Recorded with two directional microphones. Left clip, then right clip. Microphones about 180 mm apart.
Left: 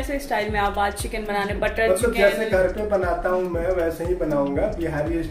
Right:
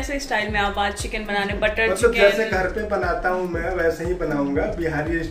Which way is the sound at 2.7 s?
Centre (ahead or behind).